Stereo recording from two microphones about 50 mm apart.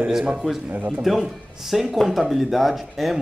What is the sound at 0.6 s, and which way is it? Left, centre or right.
Speech, right.